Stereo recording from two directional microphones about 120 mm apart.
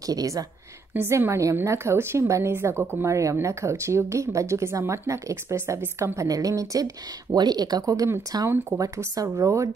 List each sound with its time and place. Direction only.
0.0 s speech: 30° right (ahead or behind)
0.9 s a woman's voice: 20° right (ahead or behind)
8.5 s a woman's voice: 20° right (ahead or behind)
8.8 s a woman's voice: 30° right (ahead or behind)